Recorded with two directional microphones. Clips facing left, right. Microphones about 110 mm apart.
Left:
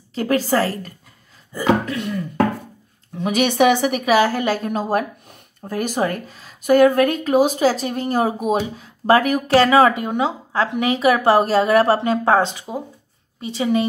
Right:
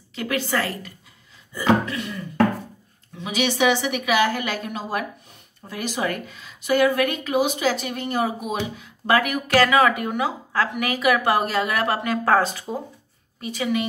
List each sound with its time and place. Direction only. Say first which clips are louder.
0.1 s a woman's voice: left 6 dB; 40° left (ahead or behind)
3.2 s a woman's voice: left 6 dB; 50° left (ahead or behind)
6.0 s a woman's voice: left 3 dB; 35° left (ahead or behind)